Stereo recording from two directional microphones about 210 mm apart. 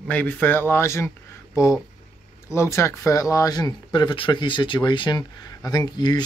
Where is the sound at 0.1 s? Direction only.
5° left (ahead or behind).